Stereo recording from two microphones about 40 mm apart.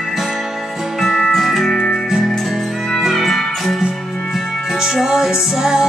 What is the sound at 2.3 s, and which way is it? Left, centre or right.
Music, centre.